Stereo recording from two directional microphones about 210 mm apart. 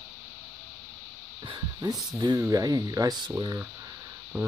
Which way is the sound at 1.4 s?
20° right (ahead or behind).